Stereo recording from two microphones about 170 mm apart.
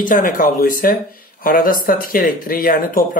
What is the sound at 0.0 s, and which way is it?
Speech, 50° left (ahead or behind).